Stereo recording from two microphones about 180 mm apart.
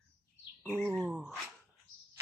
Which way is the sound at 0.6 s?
10° right (ahead or behind).